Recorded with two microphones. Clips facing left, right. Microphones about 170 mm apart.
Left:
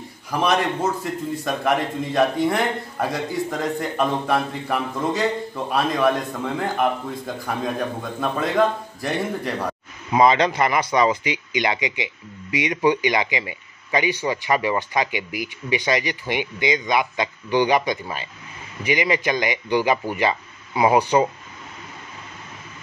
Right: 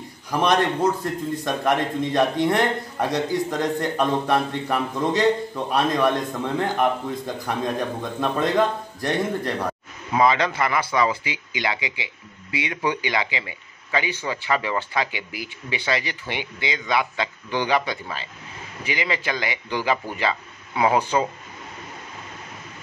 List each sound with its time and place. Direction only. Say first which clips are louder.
0.3 s a man's voice: right 1 dB; 5° left (ahead or behind)
10.1 s speech: left 3 dB; 20° left (ahead or behind)